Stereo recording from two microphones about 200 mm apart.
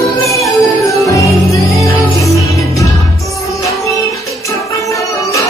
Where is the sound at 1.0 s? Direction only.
15° left (ahead or behind).